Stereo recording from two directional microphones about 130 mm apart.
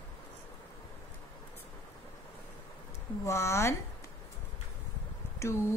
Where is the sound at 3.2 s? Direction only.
20° left (ahead or behind).